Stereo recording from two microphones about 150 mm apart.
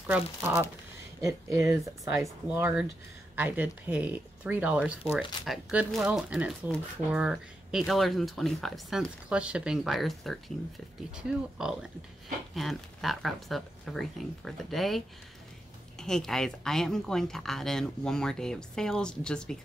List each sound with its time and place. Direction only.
0.0 s a woman's voice: 10° right (ahead or behind)